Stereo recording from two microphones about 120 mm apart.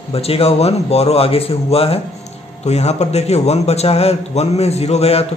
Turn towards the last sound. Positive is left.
turn(degrees=60)  # may be behind; listen again after turning